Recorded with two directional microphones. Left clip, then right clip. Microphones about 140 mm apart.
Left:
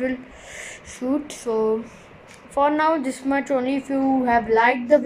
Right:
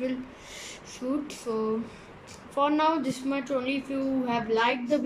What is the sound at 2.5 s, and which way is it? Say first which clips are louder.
A woman's voice: left 5 dB; 20° right (ahead or behind).